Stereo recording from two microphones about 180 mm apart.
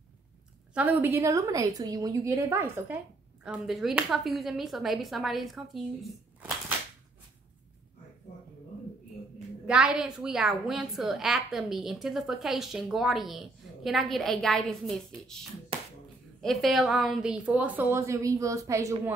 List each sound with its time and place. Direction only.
0.7 s a woman's voice: 10° right (ahead or behind)
9.7 s a woman's voice: 5° right (ahead or behind)
15.7 s a sound: 35° right (ahead or behind)
16.3 s a woman's voice: centre (ahead or behind); by 19.1 s 15° right (ahead or behind)